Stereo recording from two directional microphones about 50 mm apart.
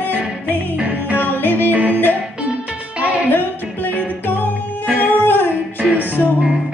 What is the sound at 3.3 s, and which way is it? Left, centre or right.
Music, left.